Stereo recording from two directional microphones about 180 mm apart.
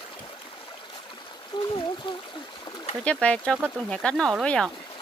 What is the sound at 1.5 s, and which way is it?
Speech, 25° left (ahead or behind).